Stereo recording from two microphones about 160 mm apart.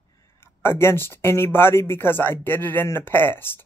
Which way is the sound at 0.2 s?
15° left (ahead or behind).